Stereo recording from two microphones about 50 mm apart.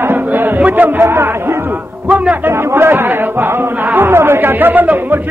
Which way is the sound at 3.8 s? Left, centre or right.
Right.